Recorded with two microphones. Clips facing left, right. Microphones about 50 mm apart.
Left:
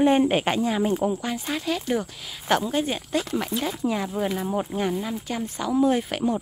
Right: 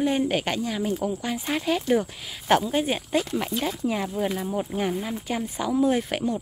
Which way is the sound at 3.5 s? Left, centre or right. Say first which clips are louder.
Even; centre.